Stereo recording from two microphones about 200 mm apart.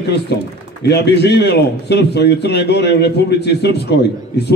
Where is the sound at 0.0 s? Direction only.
55° left (ahead or behind).